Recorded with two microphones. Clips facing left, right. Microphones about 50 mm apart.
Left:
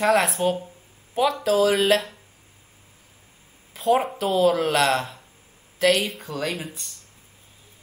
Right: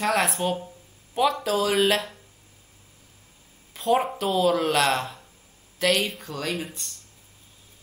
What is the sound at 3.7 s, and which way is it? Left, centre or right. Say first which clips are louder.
A woman's voice: left 2 dB; centre.